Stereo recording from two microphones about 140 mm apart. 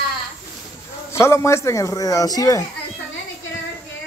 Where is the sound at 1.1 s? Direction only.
20° left (ahead or behind).